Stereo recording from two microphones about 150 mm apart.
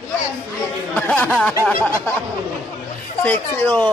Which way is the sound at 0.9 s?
10° left (ahead or behind).